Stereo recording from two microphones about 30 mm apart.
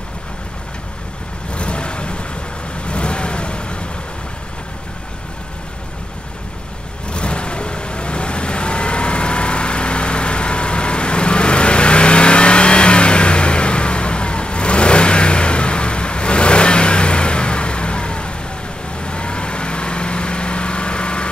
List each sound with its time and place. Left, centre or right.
1.5 s vehicle: left
7.1 s vehicle: left